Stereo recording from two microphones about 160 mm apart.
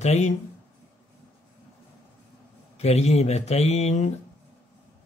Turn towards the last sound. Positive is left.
turn(degrees=45)  # may be behind; listen again after turning